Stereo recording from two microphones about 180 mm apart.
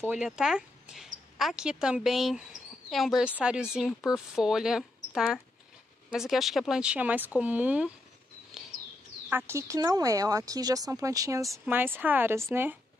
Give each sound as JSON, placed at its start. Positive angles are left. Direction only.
{"t": 0.1, "sound": "speech", "side_deg": -5}
{"t": 8.5, "sound": "bird", "side_deg": 0}
{"t": 9.3, "sound": "speech", "side_deg": -15}